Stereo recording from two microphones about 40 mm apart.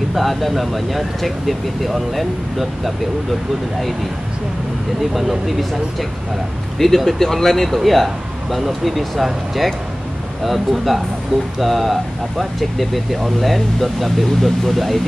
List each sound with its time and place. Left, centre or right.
0.1 s speech: centre
5.1 s speech: centre